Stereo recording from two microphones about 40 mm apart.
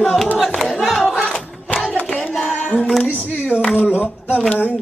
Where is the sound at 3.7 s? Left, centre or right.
Left.